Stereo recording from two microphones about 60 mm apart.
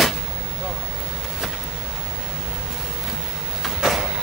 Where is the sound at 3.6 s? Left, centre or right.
Centre.